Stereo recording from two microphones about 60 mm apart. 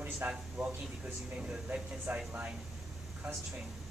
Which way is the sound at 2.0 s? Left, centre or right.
Right.